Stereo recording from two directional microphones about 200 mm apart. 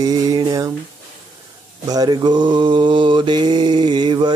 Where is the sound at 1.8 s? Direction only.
20° right (ahead or behind).